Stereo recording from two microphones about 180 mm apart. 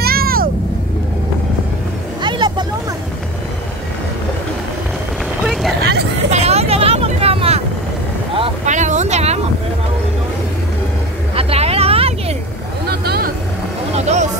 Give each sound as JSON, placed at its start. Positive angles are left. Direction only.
{"t": 0.0, "sound": "vehicle", "side_deg": -55}
{"t": 2.2, "sound": "vehicle", "side_deg": -25}
{"t": 5.4, "sound": "vehicle", "side_deg": 0}
{"t": 6.3, "sound": "vehicle", "side_deg": -35}
{"t": 11.3, "sound": "vehicle", "side_deg": -35}
{"t": 12.9, "sound": "vehicle", "side_deg": -60}
{"t": 13.9, "sound": "vehicle", "side_deg": -40}